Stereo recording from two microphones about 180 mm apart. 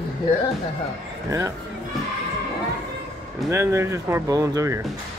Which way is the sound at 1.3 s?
15° right (ahead or behind).